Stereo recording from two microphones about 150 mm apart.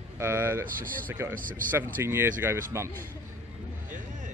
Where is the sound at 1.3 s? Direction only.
65° right (ahead or behind).